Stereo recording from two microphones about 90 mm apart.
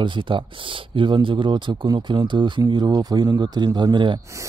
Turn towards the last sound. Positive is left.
turn(degrees=-60)  # may be behind; listen again after turning